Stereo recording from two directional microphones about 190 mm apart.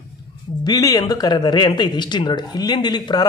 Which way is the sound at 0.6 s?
20° left (ahead or behind).